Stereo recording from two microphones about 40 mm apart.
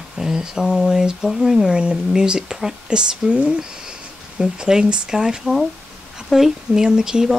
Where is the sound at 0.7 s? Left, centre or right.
Centre.